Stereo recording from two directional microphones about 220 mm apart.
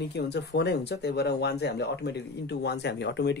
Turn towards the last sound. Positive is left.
turn(degrees=50)  # may be behind; listen again after turning